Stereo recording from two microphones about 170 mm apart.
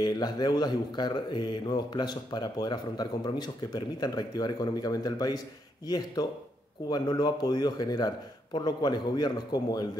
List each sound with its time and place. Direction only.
0.0 s speech: 25° left (ahead or behind)